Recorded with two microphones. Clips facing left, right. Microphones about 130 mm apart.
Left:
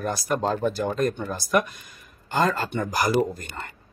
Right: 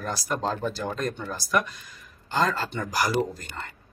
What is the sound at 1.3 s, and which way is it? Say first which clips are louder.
Speech: left 3 dB; 50° left (ahead or behind).